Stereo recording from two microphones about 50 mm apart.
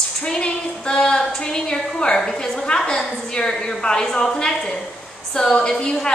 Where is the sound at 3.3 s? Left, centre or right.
Centre.